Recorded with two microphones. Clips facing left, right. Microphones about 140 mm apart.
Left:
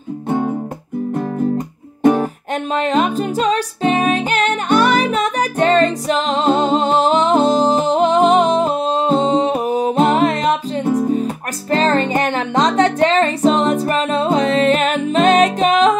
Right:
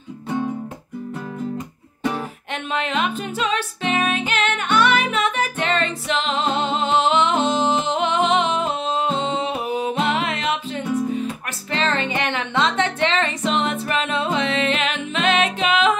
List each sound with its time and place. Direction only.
0.3 s music: 50° left (ahead or behind)
2.0 s music: 45° left (ahead or behind)